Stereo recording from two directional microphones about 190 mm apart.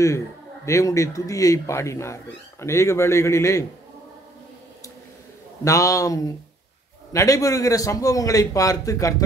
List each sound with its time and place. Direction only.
0.7 s a man's voice: 15° left (ahead or behind)
5.6 s a man's voice: 15° left (ahead or behind)